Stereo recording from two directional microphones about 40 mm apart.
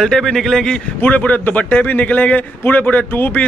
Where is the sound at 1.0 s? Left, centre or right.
Left.